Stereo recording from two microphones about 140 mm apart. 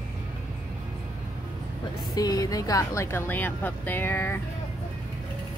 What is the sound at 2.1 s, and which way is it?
A woman's voice, 25° left (ahead or behind).